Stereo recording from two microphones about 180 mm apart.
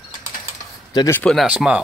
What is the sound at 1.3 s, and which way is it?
Speech, 5° right (ahead or behind).